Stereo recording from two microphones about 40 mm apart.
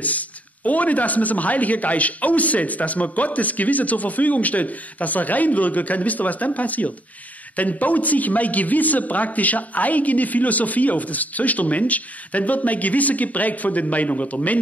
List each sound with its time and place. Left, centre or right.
0.7 s a man's voice: left